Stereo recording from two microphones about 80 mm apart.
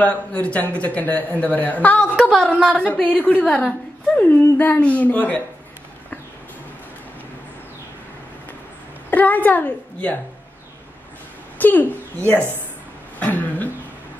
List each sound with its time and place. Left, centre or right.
0.0 s a man's voice: centre
2.1 s speech: centre
2.5 s a woman's voice: centre
2.8 s a woman's voice: centre
9.1 s a woman's voice: left
11.5 s a woman's voice: left
13.2 s a sound: left